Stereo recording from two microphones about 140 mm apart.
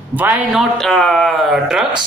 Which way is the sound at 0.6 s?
5° left (ahead or behind).